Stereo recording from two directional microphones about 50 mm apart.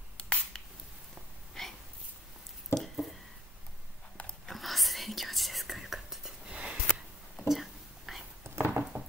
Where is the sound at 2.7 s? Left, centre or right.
Centre.